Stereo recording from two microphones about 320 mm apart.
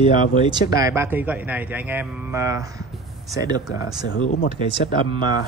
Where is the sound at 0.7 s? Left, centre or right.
Centre.